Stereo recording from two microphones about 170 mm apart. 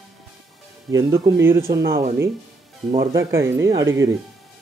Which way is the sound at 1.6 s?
70° right (ahead or behind).